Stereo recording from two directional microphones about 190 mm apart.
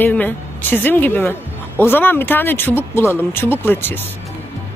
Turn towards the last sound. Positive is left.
turn(degrees=10)  # may be behind; listen again after turning